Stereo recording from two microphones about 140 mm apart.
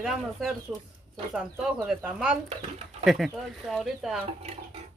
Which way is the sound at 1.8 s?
5° right (ahead or behind).